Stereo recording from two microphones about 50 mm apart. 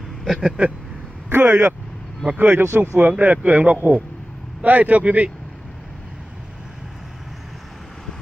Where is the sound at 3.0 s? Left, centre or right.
Right.